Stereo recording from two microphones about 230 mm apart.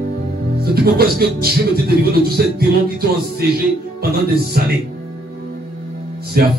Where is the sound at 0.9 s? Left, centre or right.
Right.